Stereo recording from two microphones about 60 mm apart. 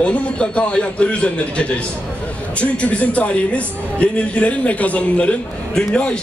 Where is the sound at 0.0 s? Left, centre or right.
Centre.